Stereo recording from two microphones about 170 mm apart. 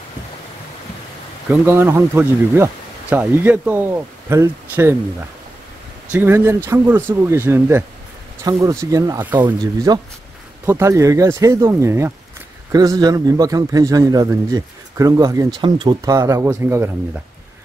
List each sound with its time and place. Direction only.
1.5 s speech: 15° right (ahead or behind)
6.1 s a man's voice: 15° right (ahead or behind)